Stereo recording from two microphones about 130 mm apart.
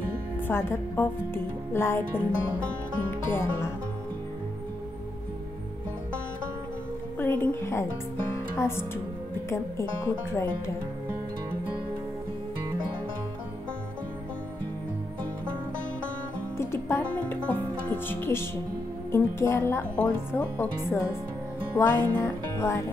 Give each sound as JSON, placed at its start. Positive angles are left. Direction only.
{"t": 0.5, "sound": "speech", "side_deg": 15}
{"t": 7.2, "sound": "a woman's voice", "side_deg": 15}
{"t": 16.5, "sound": "music", "side_deg": 20}
{"t": 19.1, "sound": "speech", "side_deg": 20}